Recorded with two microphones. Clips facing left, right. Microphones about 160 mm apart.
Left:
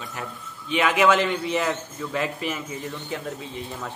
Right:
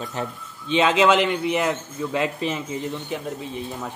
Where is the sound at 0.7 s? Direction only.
20° right (ahead or behind).